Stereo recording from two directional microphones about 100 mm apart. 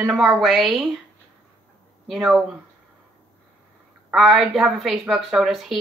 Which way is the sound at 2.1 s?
Centre (ahead or behind).